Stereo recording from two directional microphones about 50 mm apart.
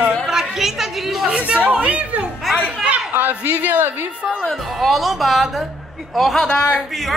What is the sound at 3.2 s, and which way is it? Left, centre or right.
Speech, right.